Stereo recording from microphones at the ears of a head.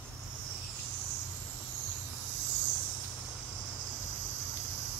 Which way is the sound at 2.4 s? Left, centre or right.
Right.